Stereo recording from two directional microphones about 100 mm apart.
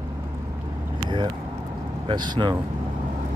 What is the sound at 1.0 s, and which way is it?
Vehicle, 50° right (ahead or behind).